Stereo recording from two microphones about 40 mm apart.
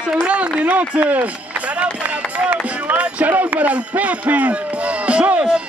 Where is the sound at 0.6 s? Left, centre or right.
Right.